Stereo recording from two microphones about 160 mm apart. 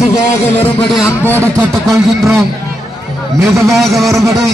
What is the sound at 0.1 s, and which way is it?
Speech, 20° left (ahead or behind).